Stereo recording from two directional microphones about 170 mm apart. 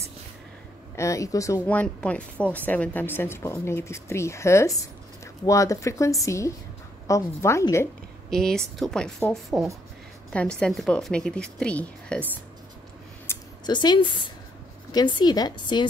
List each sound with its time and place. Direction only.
0.9 s speech: 20° left (ahead or behind)
8.3 s a woman's voice: 5° left (ahead or behind)
13.3 s a sound: 15° left (ahead or behind)
13.7 s a woman's voice: 25° left (ahead or behind)